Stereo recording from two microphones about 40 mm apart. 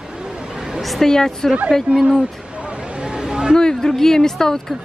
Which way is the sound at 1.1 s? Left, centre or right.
Centre.